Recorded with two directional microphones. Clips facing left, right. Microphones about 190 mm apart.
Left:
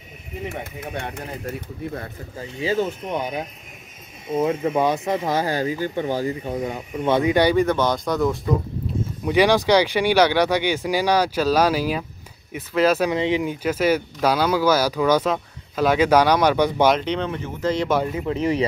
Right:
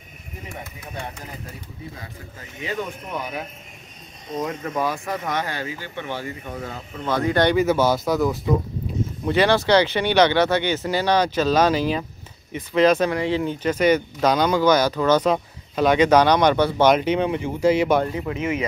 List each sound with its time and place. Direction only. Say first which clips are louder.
2.6 s speech: left 6 dB; 30° left (ahead or behind)
6.6 s speech: left 5 dB; 15° left (ahead or behind)
7.5 s speech: right 1 dB; 5° right (ahead or behind)
9.3 s speech: left 1 dB; 15° left (ahead or behind)
13.1 s speech: left 1 dB; 20° left (ahead or behind)
16.8 s speech: right 5 dB; 5° right (ahead or behind)
17.8 s speech: right 2 dB; centre (ahead or behind)
18.3 s speech: left 7 dB; 35° left (ahead or behind)